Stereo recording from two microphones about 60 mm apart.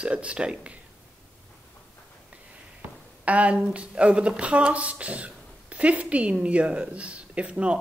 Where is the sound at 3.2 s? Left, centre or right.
Right.